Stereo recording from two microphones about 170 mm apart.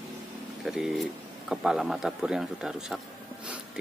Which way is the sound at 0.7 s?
Centre (ahead or behind).